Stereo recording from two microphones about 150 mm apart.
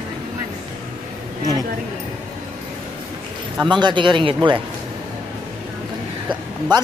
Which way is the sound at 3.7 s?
30° right (ahead or behind).